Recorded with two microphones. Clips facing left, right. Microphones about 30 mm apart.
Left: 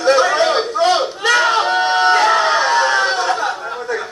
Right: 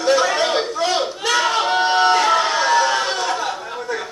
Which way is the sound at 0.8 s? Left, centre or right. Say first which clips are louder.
Left 5 dB; left.